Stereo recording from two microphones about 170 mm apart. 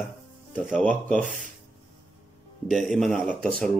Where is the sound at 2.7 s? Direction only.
Centre (ahead or behind).